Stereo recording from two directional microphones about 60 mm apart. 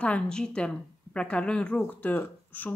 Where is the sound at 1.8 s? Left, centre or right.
Left.